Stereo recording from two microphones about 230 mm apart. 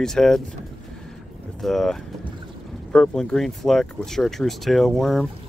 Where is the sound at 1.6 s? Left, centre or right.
Centre.